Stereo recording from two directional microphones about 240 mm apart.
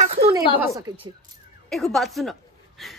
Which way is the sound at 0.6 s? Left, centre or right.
Centre.